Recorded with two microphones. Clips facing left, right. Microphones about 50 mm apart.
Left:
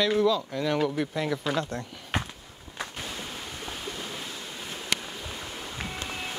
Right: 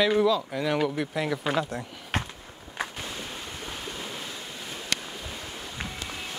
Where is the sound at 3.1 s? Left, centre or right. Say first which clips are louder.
Even; centre.